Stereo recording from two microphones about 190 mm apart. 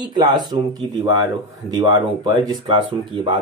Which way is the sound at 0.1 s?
20° right (ahead or behind).